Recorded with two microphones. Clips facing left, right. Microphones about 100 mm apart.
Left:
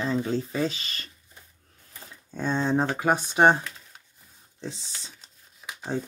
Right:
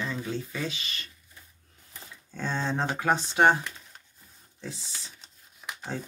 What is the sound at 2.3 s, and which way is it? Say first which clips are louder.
Speech: left 5 dB; 15° left (ahead or behind).